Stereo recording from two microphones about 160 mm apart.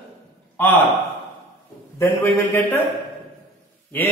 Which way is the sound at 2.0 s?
15° left (ahead or behind).